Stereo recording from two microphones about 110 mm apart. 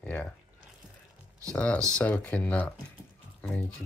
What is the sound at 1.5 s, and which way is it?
Speech, 10° left (ahead or behind).